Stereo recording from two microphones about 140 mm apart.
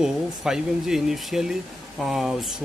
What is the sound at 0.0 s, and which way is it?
Speech, 5° right (ahead or behind).